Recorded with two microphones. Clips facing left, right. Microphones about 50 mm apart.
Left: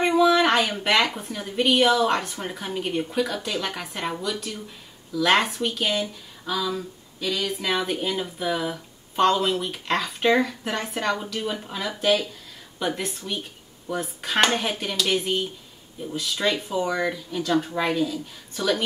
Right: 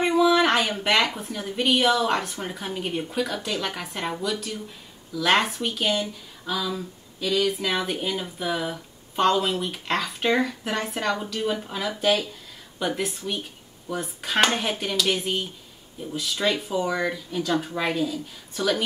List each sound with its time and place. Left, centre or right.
0.0 s speech: centre